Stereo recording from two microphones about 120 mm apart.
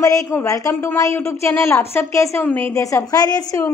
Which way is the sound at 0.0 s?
30° left (ahead or behind).